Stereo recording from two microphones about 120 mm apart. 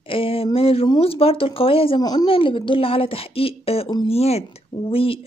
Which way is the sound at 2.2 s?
50° left (ahead or behind).